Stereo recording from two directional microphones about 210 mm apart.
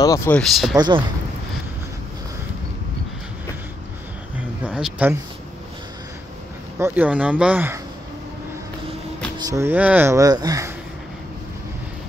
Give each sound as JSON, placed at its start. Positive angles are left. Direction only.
{"t": 0.0, "sound": "speech", "side_deg": 15}
{"t": 0.4, "sound": "speech", "side_deg": 0}
{"t": 0.7, "sound": "speech", "side_deg": -20}
{"t": 4.6, "sound": "a sound", "side_deg": -5}
{"t": 6.8, "sound": "speech", "side_deg": -5}
{"t": 9.4, "sound": "speech", "side_deg": -15}